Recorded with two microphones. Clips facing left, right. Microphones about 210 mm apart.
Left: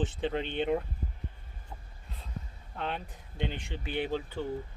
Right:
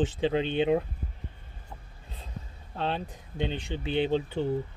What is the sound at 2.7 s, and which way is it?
Speech, 25° right (ahead or behind).